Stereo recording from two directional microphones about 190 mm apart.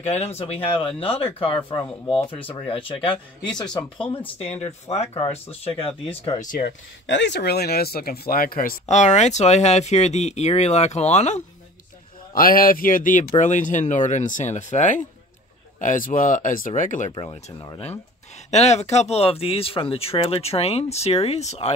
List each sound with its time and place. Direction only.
0.0 s speech: 35° left (ahead or behind)
4.4 s speech: 35° left (ahead or behind)
7.1 s speech: 70° left (ahead or behind); by 11.4 s 35° left (ahead or behind)
12.4 s speech: 50° left (ahead or behind)
17.1 s speech: 25° left (ahead or behind)